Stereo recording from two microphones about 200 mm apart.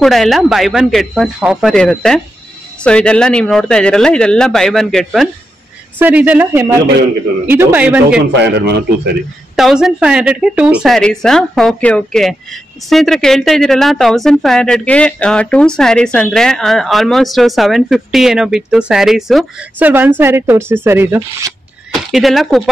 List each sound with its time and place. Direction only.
0.0 s speech: centre (ahead or behind)
8.3 s a man's voice: 60° right (ahead or behind)
9.6 s speech: centre (ahead or behind)
21.9 s speech: centre (ahead or behind)